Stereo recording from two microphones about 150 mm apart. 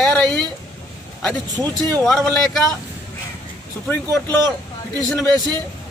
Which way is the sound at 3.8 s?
15° left (ahead or behind).